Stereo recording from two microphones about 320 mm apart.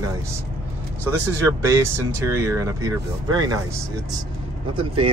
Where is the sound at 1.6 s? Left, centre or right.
Centre.